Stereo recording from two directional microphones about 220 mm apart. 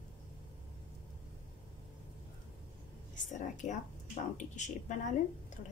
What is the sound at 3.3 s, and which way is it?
A woman's voice, 35° left (ahead or behind).